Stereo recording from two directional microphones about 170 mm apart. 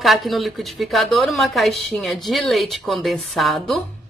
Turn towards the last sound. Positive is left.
turn(degrees=0)  # may be behind; listen again after turning